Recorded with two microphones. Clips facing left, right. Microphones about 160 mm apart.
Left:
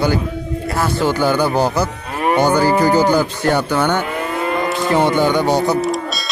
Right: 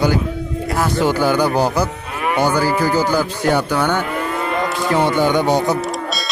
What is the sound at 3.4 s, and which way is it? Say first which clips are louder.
Speech: right 1 dB; 5° right (ahead or behind).